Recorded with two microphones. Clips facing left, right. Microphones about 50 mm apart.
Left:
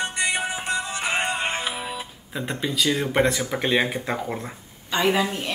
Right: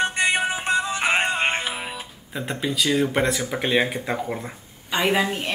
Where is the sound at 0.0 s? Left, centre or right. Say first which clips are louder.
Right 4 dB; right.